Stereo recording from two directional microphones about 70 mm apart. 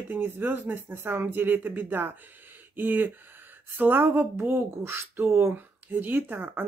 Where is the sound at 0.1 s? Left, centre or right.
Right.